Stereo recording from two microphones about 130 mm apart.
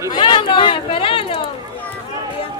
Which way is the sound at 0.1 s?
40° left (ahead or behind).